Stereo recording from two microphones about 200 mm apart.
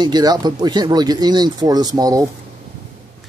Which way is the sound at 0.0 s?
20° right (ahead or behind).